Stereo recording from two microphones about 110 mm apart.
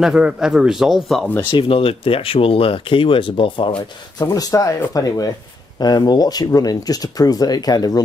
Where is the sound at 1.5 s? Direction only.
55° left (ahead or behind).